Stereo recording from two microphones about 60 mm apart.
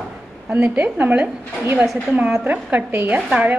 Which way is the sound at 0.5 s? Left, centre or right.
Right.